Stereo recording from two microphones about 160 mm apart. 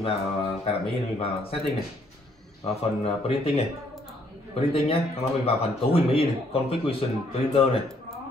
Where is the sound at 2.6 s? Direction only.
40° left (ahead or behind).